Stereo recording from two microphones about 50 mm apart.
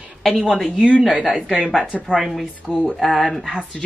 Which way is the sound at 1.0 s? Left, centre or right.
Centre.